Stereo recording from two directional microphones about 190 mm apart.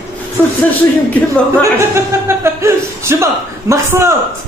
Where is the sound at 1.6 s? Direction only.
15° right (ahead or behind).